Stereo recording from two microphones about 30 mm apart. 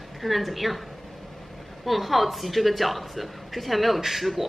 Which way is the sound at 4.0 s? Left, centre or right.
Centre.